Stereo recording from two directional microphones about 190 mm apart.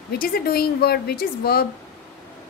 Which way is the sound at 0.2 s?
50° left (ahead or behind).